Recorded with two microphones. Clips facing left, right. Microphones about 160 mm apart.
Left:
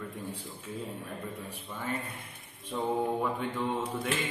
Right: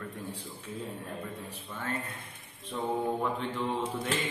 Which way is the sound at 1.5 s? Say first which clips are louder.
Left 1 dB; 10° left (ahead or behind).